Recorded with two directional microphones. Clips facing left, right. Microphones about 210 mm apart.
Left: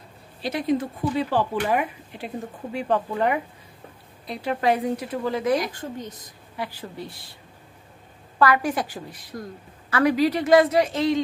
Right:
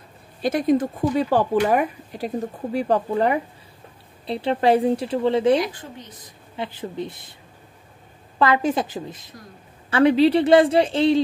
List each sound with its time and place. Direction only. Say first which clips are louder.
0.4 s speech: right 5 dB; 45° right (ahead or behind); by 5.6 s 30° right (ahead or behind)
5.7 s a woman's voice: left 5 dB; 45° left (ahead or behind)
6.5 s speech: right 4 dB; 20° right (ahead or behind)
8.4 s speech: right 2 dB; 25° right (ahead or behind)